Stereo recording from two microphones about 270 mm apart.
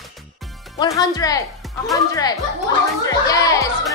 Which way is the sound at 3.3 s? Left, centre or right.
Centre.